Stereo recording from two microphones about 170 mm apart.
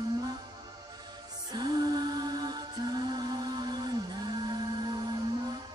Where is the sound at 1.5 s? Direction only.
25° right (ahead or behind).